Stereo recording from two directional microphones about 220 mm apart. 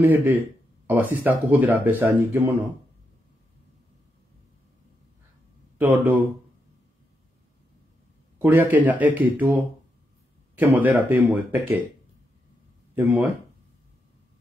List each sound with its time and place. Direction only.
0.0 s speech: 10° right (ahead or behind)
5.8 s speech: 10° right (ahead or behind)
8.4 s speech: 10° right (ahead or behind)
12.9 s speech: 10° right (ahead or behind)